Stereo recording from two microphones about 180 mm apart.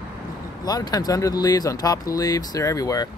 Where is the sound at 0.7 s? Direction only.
20° left (ahead or behind).